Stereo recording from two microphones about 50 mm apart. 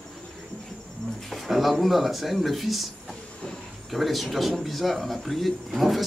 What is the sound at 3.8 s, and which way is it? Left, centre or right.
Speech, centre.